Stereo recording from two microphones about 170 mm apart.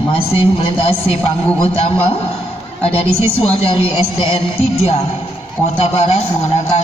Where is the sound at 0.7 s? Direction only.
35° left (ahead or behind).